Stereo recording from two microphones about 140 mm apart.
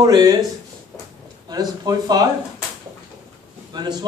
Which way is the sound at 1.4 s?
30° right (ahead or behind).